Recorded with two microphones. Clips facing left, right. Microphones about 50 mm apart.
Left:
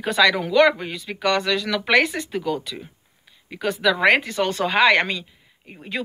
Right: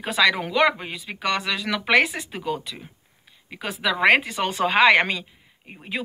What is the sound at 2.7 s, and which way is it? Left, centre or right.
Speech, centre.